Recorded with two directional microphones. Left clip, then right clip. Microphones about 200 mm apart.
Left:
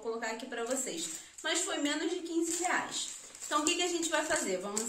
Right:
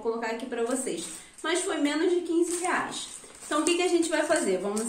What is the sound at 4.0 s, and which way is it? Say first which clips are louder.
Speech: right 7 dB; centre (ahead or behind).